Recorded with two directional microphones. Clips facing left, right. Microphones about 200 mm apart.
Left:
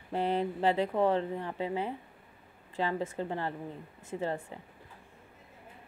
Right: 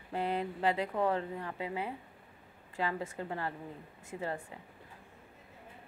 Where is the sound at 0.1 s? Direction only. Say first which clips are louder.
Left 4 dB; 30° left (ahead or behind).